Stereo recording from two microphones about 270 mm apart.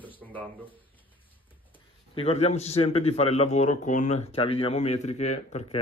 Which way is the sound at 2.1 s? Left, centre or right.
Left.